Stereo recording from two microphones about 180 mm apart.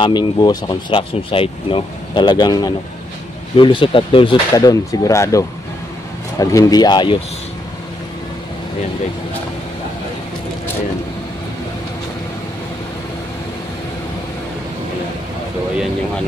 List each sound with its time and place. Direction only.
0.0 s speech: 25° left (ahead or behind)